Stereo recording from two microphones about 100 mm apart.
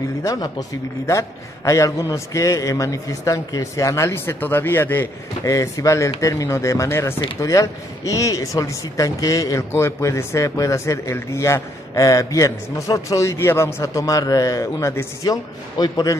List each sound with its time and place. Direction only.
0.2 s speech: 35° left (ahead or behind); by 5.1 s 20° left (ahead or behind)
5.4 s speech: 35° left (ahead or behind)
15.8 s a man's voice: 40° left (ahead or behind)